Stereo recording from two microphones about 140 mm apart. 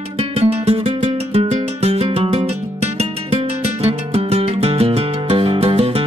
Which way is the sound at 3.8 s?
45° right (ahead or behind).